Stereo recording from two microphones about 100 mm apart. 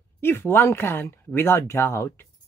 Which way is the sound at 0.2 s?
20° left (ahead or behind).